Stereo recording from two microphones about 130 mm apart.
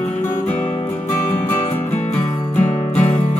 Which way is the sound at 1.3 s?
15° left (ahead or behind).